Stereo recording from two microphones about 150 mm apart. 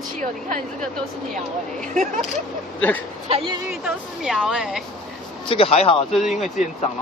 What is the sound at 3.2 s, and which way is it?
Speech, 45° right (ahead or behind).